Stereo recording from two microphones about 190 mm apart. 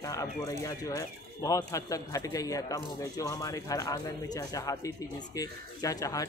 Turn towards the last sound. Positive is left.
turn(degrees=20)  # may be behind; listen again after turning